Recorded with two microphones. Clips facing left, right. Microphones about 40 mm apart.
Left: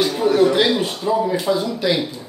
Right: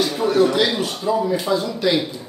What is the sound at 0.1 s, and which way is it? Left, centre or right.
Speech, centre.